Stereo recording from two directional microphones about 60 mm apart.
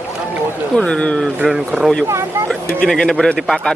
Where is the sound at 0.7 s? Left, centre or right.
Centre.